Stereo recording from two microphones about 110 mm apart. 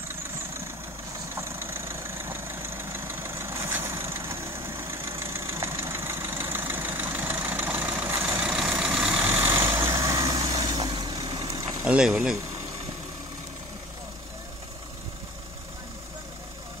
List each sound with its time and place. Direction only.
1.3 s vehicle: 20° right (ahead or behind)
10.9 s vehicle: 40° right (ahead or behind)
11.8 s speech: 10° right (ahead or behind)